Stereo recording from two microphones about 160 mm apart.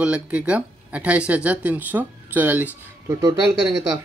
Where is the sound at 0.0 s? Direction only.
5° right (ahead or behind).